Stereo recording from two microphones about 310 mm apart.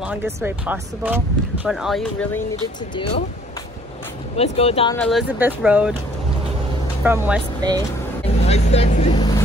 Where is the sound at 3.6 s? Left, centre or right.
Centre.